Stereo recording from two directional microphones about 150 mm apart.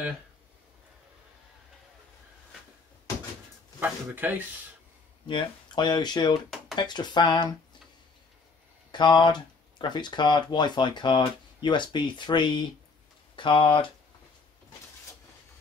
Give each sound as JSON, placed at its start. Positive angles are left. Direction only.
{"t": 3.8, "sound": "speech", "side_deg": -10}
{"t": 5.2, "sound": "speech", "side_deg": 30}
{"t": 8.9, "sound": "speech", "side_deg": 30}